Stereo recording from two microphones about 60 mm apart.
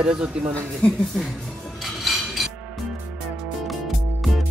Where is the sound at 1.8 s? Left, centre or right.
Centre.